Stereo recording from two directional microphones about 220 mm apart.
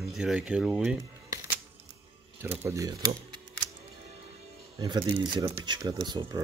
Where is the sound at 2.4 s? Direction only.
10° right (ahead or behind).